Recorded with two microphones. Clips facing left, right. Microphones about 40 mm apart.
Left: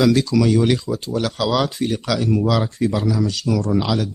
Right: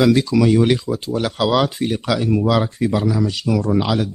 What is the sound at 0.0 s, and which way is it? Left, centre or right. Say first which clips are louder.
Speech: right 1 dB; centre.